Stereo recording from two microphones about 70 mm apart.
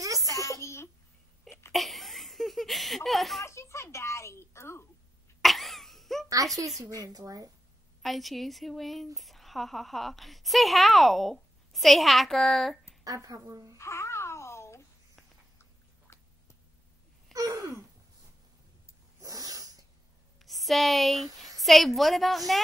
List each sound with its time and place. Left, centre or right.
0.3 s a sound: left
1.7 s a sound: centre
3.4 s a sound: left
5.4 s laughter: centre
6.2 s a child's voice: right
8.0 s a woman's voice: centre
13.0 s speech: right
13.7 s babbling: left
16.1 s a sound: left
17.3 s gasp: centre
19.1 s cat: right
20.4 s a woman's voice: centre